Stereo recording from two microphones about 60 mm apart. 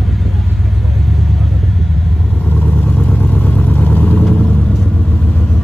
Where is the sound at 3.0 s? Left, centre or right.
Left.